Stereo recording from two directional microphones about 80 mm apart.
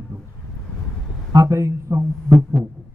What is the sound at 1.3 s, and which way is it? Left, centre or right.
Speech, right.